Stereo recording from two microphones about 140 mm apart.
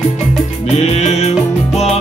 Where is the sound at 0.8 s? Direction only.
50° left (ahead or behind).